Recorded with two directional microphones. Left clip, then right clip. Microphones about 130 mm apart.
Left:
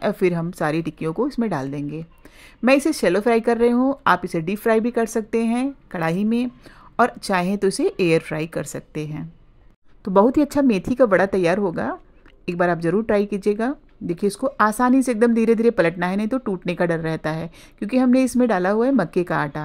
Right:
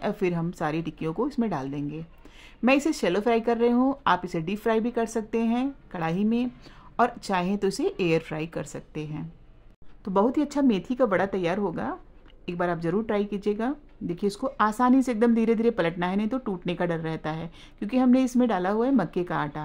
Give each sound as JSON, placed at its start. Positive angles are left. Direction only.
{"t": 0.0, "sound": "speech", "side_deg": 25}